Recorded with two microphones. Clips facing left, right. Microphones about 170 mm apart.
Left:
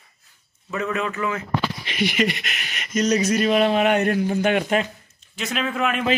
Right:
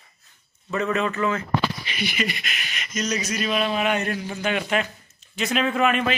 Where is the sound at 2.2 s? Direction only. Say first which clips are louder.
Left 5 dB; 60° left (ahead or behind).